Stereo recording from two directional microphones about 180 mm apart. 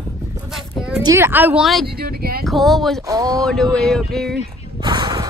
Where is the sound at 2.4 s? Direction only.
Centre (ahead or behind).